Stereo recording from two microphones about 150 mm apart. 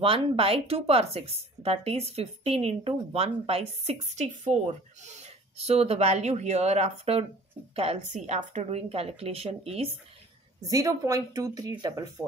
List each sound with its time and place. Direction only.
0.0 s speech: 35° right (ahead or behind)
10.7 s a woman's voice: 20° right (ahead or behind)